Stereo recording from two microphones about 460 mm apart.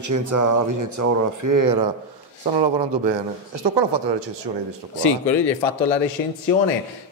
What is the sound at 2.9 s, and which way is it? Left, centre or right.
Speech, right.